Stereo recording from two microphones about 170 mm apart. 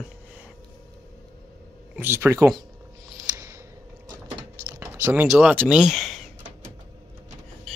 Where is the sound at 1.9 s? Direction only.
15° right (ahead or behind).